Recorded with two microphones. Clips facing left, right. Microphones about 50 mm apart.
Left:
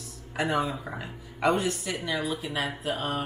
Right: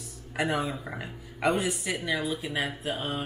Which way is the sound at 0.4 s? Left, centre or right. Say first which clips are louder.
Left 1 dB; centre.